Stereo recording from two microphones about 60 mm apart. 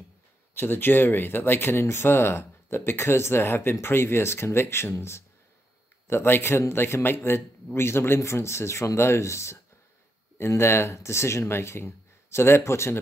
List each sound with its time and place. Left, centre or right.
0.6 s speech: left